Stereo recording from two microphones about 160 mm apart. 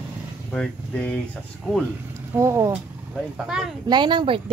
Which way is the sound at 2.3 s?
15° right (ahead or behind).